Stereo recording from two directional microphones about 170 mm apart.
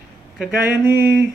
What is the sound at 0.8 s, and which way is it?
Speech, 15° right (ahead or behind).